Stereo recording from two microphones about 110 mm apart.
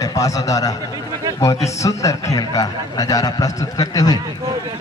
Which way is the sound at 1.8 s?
30° left (ahead or behind).